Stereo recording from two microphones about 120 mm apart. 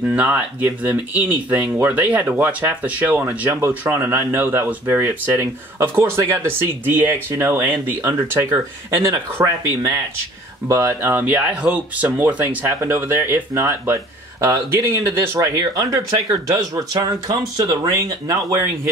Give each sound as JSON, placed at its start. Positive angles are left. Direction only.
{"t": 0.0, "sound": "speech", "side_deg": -10}